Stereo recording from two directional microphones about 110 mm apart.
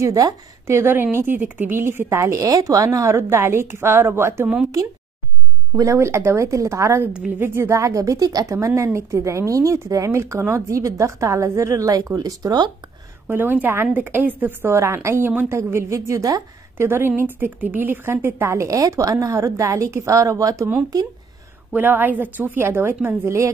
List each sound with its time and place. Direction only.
0.0 s a woman's voice: 30° right (ahead or behind)
5.8 s a woman's voice: 25° right (ahead or behind)
7.1 s a woman's voice: 10° right (ahead or behind); by 12.7 s 35° right (ahead or behind)
13.3 s a woman's voice: 15° right (ahead or behind)
21.7 s a woman's voice: 15° right (ahead or behind)